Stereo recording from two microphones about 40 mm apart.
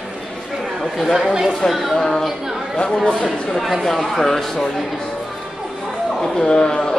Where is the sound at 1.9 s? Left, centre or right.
Centre.